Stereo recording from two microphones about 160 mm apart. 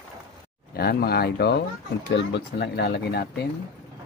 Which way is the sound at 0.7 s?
75° left (ahead or behind).